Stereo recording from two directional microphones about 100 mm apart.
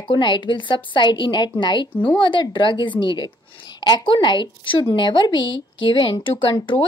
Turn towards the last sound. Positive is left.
turn(degrees=60)  # may be behind; listen again after turning